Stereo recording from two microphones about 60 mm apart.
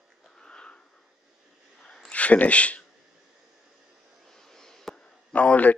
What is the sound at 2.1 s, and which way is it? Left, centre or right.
Speech, left.